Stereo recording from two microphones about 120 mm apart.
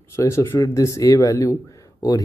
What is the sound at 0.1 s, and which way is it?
Speech, 25° left (ahead or behind).